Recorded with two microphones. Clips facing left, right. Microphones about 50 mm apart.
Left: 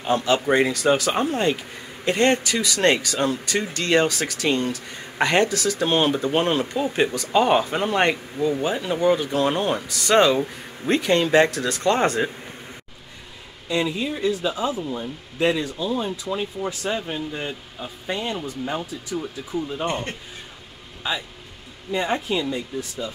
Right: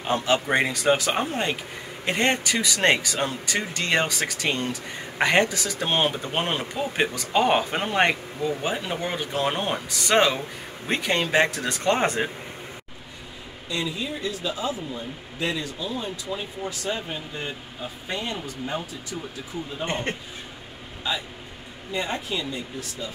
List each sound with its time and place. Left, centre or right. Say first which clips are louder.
0.0 s speech: left 3 dB; centre
11.6 s speech: left 3 dB; right
13.7 s speech: left 5 dB; left
19.9 s speech: even; right
21.9 s speech: left 5 dB; left